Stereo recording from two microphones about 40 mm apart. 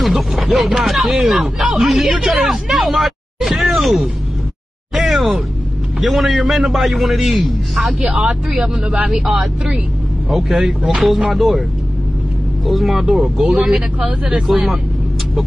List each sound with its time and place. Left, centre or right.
0.0 s speech: centre
4.9 s a sound: centre
5.9 s speech: centre
8.3 s speech: centre
9.1 s speech: centre
12.6 s speech: centre
13.7 s speech: right
14.5 s speech: centre